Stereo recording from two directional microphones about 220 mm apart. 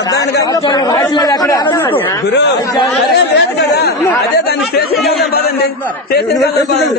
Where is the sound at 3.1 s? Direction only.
50° left (ahead or behind).